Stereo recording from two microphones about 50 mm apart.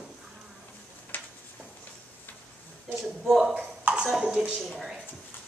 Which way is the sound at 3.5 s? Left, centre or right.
Right.